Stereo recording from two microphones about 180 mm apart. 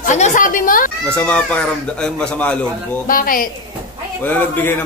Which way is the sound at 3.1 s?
50° left (ahead or behind).